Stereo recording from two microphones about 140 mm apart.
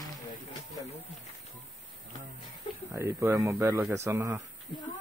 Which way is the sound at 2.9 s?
20° right (ahead or behind).